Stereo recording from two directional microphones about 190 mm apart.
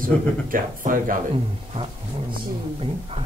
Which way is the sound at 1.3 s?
30° right (ahead or behind).